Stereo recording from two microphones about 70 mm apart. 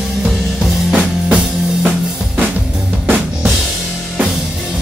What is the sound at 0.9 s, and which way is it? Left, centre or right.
Music, centre.